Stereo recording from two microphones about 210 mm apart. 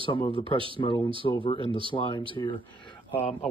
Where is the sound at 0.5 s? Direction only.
25° right (ahead or behind).